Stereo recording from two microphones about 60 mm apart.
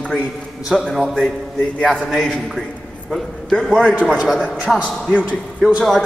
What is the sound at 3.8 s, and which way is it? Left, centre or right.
Speech, centre.